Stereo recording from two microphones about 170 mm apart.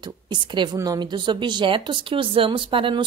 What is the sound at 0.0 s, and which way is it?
A woman's voice, 25° right (ahead or behind).